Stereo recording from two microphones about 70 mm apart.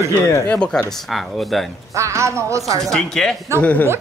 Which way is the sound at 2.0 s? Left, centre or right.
Right.